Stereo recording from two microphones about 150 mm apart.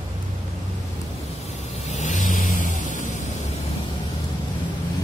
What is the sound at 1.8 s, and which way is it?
Vehicle, 50° left (ahead or behind).